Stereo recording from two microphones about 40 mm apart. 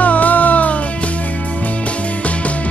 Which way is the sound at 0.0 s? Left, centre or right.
Left.